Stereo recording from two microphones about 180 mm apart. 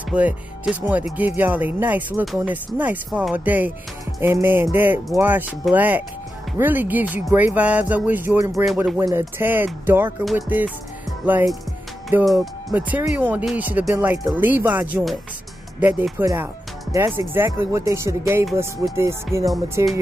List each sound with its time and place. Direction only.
0.1 s speech: 5° right (ahead or behind)
19.8 s music: 20° right (ahead or behind)